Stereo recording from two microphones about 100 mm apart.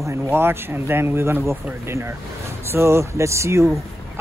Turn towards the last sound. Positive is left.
turn(degrees=-30)  # may be behind; listen again after turning